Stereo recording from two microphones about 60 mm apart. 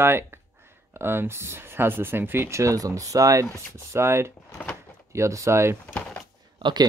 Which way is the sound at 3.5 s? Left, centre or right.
Right.